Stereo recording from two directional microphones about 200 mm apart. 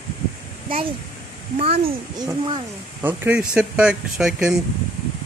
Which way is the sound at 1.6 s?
30° right (ahead or behind).